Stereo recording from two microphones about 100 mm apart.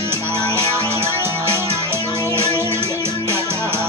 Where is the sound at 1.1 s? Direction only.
25° right (ahead or behind).